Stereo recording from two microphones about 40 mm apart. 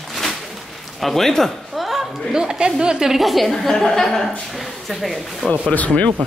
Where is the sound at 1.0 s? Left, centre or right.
Centre.